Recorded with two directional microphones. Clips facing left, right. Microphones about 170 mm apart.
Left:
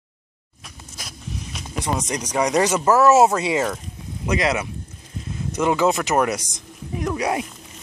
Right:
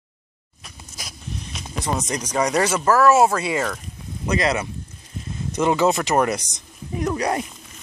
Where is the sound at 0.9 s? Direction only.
Centre (ahead or behind); by 3.8 s 20° left (ahead or behind).